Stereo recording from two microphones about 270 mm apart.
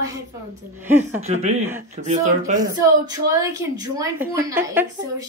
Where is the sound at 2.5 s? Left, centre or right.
Centre.